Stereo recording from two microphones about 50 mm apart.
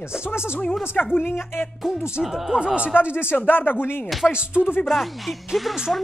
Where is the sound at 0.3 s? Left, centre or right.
Left.